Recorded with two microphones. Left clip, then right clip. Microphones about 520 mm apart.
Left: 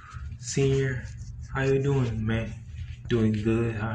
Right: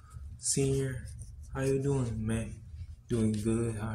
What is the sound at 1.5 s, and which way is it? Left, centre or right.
Mantra, right.